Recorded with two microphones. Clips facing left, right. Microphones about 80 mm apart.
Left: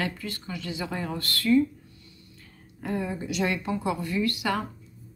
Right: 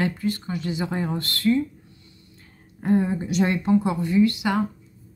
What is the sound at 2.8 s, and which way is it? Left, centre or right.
Speech, right.